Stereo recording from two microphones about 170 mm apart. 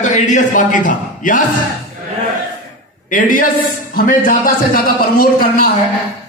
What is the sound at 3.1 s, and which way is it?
A man's voice, 50° left (ahead or behind).